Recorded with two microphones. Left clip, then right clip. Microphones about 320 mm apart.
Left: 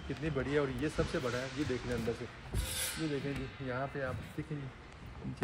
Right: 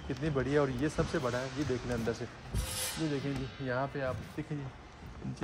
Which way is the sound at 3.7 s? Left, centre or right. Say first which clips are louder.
Right 4 dB; right.